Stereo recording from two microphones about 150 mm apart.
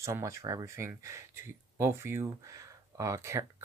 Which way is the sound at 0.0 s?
20° right (ahead or behind).